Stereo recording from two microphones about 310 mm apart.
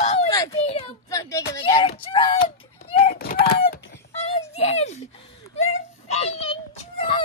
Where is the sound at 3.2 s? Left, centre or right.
Left.